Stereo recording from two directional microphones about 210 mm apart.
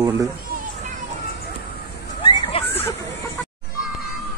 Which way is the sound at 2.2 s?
25° left (ahead or behind).